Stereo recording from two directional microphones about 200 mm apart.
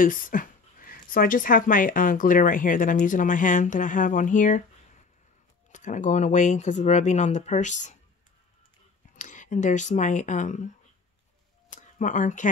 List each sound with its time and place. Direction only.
0.0 s speech: 45° left (ahead or behind)
5.7 s speech: 40° left (ahead or behind)
9.1 s speech: 40° left (ahead or behind)
12.0 s speech: 40° left (ahead or behind)